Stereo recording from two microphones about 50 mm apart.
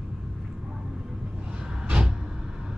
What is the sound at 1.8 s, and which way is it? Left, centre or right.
Vehicle, centre.